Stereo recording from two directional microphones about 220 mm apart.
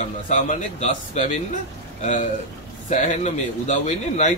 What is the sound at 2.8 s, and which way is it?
A man's voice, 35° left (ahead or behind).